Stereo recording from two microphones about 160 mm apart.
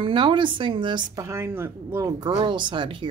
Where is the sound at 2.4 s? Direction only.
30° right (ahead or behind).